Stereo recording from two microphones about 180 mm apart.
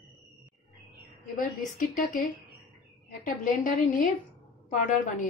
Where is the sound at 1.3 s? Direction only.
45° left (ahead or behind).